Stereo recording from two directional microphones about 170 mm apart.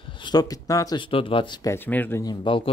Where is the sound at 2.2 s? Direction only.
25° left (ahead or behind).